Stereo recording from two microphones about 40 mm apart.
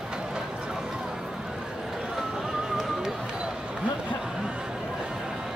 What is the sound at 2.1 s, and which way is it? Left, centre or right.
Music, centre.